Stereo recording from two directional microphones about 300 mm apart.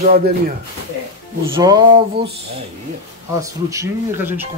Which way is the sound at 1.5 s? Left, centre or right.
Centre.